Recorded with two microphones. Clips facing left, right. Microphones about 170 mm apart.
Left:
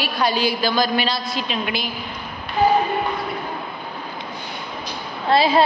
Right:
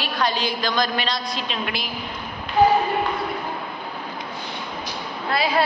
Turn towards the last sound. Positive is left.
turn(degrees=25)  # may be behind; listen again after turning